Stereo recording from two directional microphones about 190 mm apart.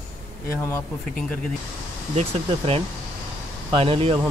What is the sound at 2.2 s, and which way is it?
Speech, 30° right (ahead or behind).